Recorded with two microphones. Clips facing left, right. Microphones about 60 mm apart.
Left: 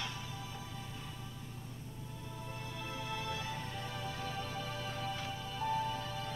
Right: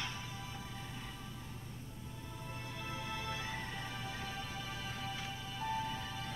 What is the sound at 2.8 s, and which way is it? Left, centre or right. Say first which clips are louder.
Music: left 1 dB; right.